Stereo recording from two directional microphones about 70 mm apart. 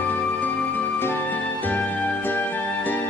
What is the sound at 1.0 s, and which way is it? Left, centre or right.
Music, left.